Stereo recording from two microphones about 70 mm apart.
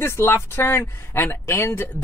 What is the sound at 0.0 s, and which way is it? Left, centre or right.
Speech, left.